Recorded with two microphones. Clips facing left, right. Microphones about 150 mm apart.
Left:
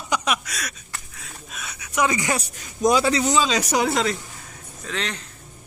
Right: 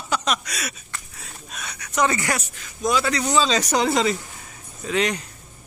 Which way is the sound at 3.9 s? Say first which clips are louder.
Right 2 dB; centre (ahead or behind).